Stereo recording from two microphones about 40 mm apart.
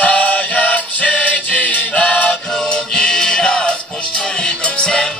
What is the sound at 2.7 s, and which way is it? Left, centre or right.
Music, centre.